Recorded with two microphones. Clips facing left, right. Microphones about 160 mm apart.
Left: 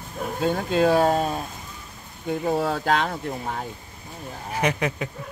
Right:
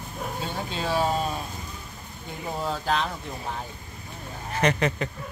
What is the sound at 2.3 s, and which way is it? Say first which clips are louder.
Speech: left 7 dB; 65° left (ahead or behind).